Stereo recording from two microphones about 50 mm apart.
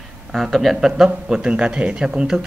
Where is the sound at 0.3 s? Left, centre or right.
Centre.